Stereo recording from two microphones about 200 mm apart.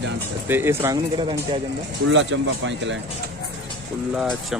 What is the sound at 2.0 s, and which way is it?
Speech, 65° right (ahead or behind).